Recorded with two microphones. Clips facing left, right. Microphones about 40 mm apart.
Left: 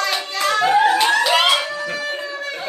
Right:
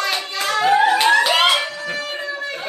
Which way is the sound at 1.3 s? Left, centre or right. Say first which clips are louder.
Even; centre.